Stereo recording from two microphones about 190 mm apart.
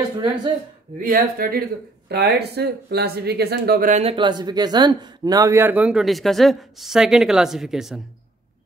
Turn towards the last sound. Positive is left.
turn(degrees=0)  # may be behind; listen again after turning